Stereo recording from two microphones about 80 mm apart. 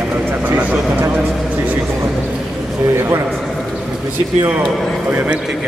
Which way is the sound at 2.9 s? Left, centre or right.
Right.